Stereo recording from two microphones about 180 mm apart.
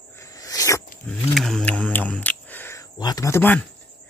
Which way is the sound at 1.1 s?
Centre (ahead or behind).